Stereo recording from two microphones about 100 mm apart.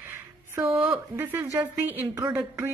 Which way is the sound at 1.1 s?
25° right (ahead or behind).